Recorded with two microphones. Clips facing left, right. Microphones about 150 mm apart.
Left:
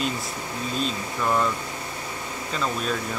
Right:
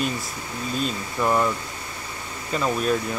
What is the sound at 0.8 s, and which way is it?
Speech, 10° right (ahead or behind).